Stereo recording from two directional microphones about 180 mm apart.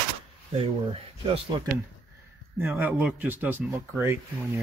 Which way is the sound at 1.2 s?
30° right (ahead or behind).